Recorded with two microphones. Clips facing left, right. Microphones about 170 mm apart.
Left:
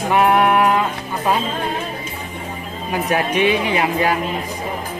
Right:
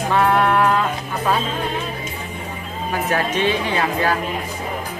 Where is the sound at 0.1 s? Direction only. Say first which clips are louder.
Left 2 dB; 15° left (ahead or behind).